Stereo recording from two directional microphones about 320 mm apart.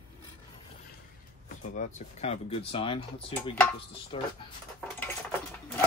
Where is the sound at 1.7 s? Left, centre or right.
Left.